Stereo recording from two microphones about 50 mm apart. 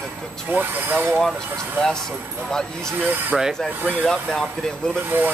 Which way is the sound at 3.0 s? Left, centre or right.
Right.